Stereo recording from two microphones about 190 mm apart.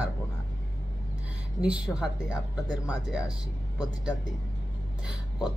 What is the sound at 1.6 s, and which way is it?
Speech, 5° right (ahead or behind).